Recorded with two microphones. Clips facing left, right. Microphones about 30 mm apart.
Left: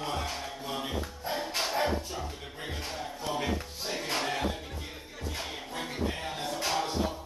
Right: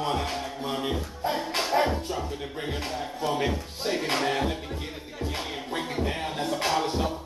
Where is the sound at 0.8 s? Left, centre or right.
Right.